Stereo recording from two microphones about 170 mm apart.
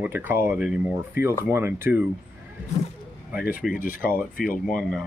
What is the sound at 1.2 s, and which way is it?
Speech, 65° left (ahead or behind).